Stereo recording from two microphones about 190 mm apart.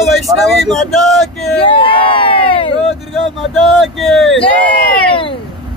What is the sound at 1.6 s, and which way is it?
Crowd, 25° left (ahead or behind).